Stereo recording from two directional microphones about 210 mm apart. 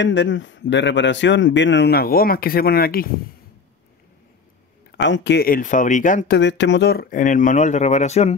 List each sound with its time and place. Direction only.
0.0 s speech: 60° left (ahead or behind)
4.9 s speech: 60° left (ahead or behind); by 6.3 s 35° left (ahead or behind)
6.3 s speech: 60° left (ahead or behind); by 8.4 s 30° left (ahead or behind)